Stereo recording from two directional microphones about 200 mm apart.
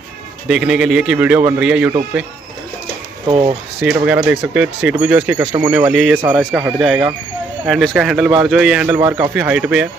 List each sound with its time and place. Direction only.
0.5 s speech: 5° right (ahead or behind)
3.3 s speech: 25° right (ahead or behind)
3.8 s speech: 5° right (ahead or behind)